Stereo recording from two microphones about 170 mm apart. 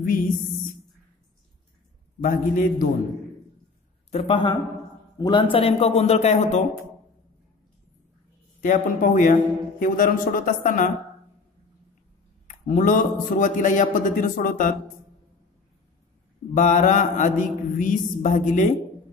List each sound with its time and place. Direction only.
2.2 s a man's voice: 55° left (ahead or behind)
4.1 s a man's voice: 35° left (ahead or behind)
8.6 s a man's voice: 50° left (ahead or behind)
12.4 s a man's voice: 50° left (ahead or behind)
16.5 s a man's voice: 50° left (ahead or behind)